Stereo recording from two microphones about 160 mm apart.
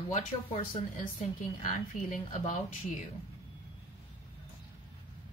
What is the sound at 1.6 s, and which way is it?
Speech, 55° left (ahead or behind).